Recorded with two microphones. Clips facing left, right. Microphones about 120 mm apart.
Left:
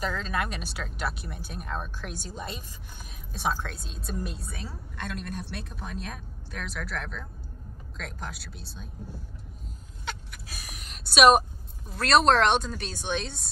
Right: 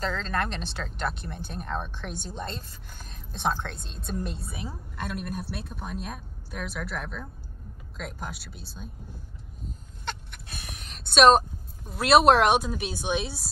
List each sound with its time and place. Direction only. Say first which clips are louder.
0.0 s speech: right 1 dB; 5° left (ahead or behind)
4.6 s speech: right 3 dB; 10° right (ahead or behind)
9.7 s a sound: right 2 dB; centre (ahead or behind)
11.9 s speech: right 3 dB; 5° right (ahead or behind)